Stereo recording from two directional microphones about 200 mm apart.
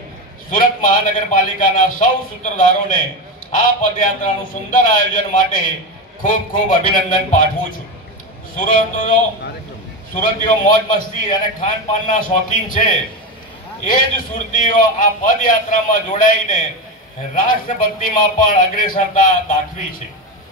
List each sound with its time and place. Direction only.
0.5 s a man's voice: 40° left (ahead or behind)
8.5 s a man's voice: 40° left (ahead or behind)